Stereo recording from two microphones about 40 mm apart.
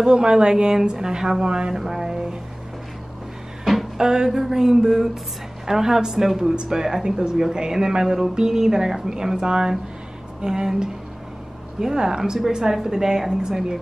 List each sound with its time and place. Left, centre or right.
0.0 s speech: centre
4.0 s speech: centre